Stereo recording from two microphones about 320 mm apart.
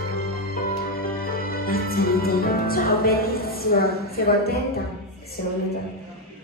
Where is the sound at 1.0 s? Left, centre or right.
Left.